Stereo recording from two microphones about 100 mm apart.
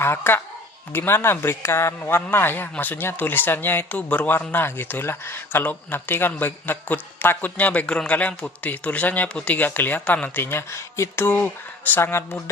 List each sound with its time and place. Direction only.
0.0 s speech: 25° left (ahead or behind)